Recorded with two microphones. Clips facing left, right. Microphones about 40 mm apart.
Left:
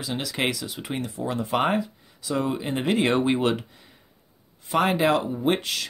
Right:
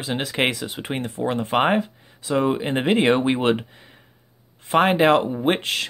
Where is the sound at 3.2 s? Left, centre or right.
Right.